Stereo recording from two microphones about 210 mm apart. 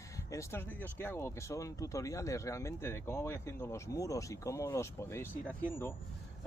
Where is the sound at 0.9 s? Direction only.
10° left (ahead or behind).